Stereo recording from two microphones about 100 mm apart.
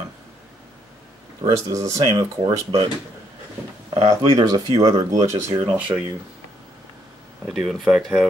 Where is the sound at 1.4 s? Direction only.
35° right (ahead or behind).